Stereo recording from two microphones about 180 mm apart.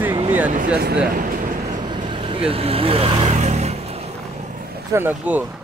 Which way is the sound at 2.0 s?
30° right (ahead or behind).